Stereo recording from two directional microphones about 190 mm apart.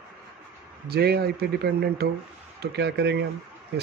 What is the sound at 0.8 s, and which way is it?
Speech, 55° right (ahead or behind).